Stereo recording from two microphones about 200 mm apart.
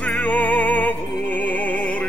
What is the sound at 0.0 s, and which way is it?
Music, 5° left (ahead or behind).